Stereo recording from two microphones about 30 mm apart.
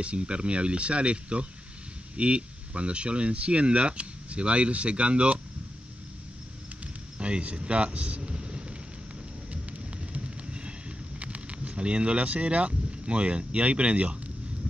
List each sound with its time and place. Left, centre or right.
0.0 s speech: right
7.2 s speech: right
8.2 s vehicle: right
9.5 s a sound: right
11.1 s speech: right